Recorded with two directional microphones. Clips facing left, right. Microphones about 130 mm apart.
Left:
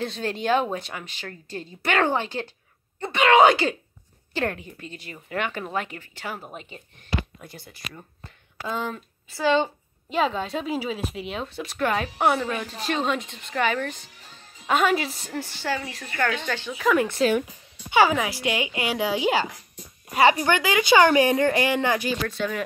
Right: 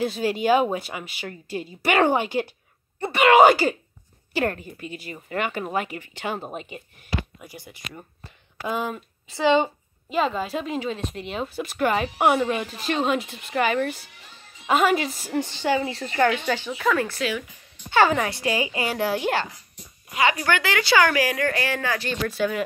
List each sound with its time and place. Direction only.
0.0 s a woman's voice: 5° right (ahead or behind)
6.1 s speech: 25° right (ahead or behind)
10.0 s speech: centre (ahead or behind)
15.3 s speech: 20° right (ahead or behind)
16.4 s speech: 10° right (ahead or behind)
16.9 s speech: 20° left (ahead or behind)
17.2 s speech: 40° left (ahead or behind)
17.8 s speech: 10° left (ahead or behind)
20.1 s speech: 35° left (ahead or behind)
20.4 s speech: 15° left (ahead or behind)
22.2 s speech: 5° right (ahead or behind)